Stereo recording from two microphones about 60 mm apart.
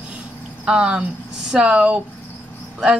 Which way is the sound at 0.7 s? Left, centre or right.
Centre.